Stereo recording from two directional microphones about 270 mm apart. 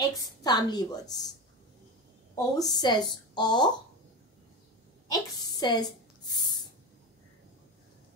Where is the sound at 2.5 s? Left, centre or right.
Centre.